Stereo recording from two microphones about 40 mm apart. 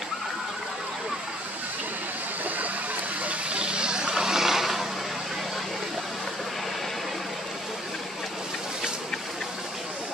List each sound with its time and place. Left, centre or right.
3.3 s vehicle: right; by 4.8 s centre